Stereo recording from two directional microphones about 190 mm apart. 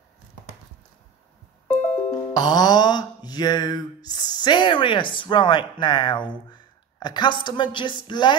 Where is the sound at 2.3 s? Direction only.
20° left (ahead or behind).